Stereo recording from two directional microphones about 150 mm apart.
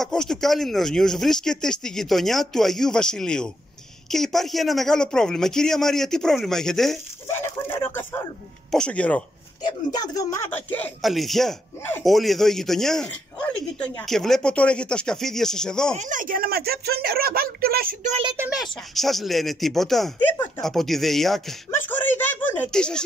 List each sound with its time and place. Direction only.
0.0 s speech: 5° left (ahead or behind)
7.2 s speech: 15° left (ahead or behind)
9.8 s speech: 25° left (ahead or behind)
10.5 s speech: 10° left (ahead or behind)
11.0 s speech: centre (ahead or behind)
16.0 s speech: 60° right (ahead or behind); by 17.9 s 85° right
18.5 s speech: centre (ahead or behind)
21.6 s speech: 10° left (ahead or behind)